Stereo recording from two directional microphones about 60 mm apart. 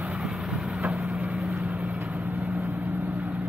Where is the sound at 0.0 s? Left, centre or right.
Centre.